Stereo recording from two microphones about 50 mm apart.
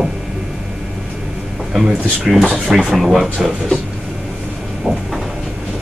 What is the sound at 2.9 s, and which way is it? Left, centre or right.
Speech, centre.